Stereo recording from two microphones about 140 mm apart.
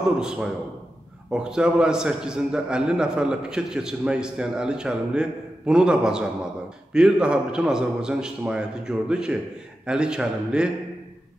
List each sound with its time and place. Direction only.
0.2 s a man's voice: 5° right (ahead or behind)